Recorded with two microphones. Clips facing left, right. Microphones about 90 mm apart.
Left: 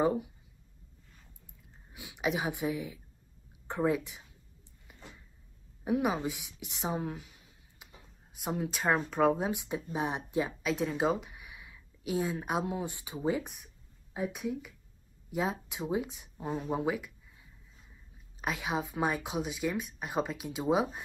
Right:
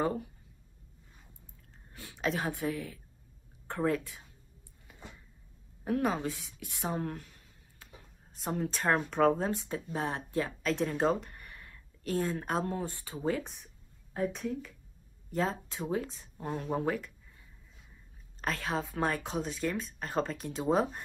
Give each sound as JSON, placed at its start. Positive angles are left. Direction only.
{"t": 0.0, "sound": "speech", "side_deg": 15}
{"t": 1.9, "sound": "a woman's voice", "side_deg": 15}
{"t": 5.9, "sound": "speech", "side_deg": 15}
{"t": 7.0, "sound": "a sound", "side_deg": 10}
{"t": 8.4, "sound": "speech", "side_deg": 5}
{"t": 18.4, "sound": "speech", "side_deg": 15}